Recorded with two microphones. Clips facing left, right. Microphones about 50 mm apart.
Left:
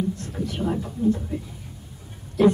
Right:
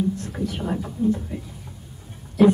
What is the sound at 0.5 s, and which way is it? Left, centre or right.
A man's voice, centre.